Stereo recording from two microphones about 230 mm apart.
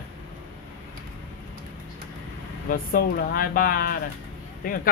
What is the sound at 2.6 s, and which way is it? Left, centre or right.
Speech, left.